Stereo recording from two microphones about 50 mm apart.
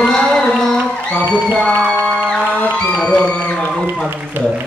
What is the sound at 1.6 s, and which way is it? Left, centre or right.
Music, centre.